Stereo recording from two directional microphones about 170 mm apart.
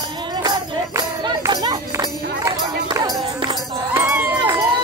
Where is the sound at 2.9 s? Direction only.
20° right (ahead or behind).